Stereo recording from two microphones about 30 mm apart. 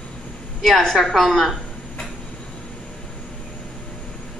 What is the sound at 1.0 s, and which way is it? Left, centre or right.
Speech, centre.